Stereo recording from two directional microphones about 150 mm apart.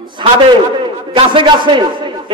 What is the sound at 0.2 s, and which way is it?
A man's voice, 30° right (ahead or behind).